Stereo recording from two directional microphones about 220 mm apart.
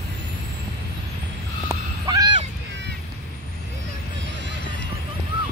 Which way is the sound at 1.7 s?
15° right (ahead or behind).